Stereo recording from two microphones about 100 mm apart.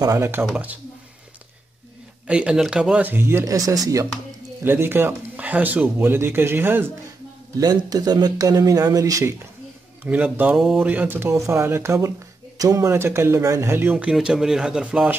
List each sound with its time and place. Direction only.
0.0 s speech: 30° right (ahead or behind)
2.2 s speech: 10° right (ahead or behind); by 4.1 s 35° right (ahead or behind)
4.6 s speech: 20° right (ahead or behind)
7.5 s speech: 40° right (ahead or behind)
10.0 s speech: 15° right (ahead or behind)
10.5 s a sound: 5° right (ahead or behind)
10.8 s speech: 20° right (ahead or behind)
13.9 s speech: 10° right (ahead or behind)